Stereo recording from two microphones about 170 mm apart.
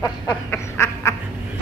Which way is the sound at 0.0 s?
15° left (ahead or behind).